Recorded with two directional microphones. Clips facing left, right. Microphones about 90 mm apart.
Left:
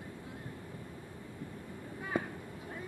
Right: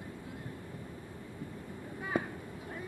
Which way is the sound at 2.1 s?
5° right (ahead or behind).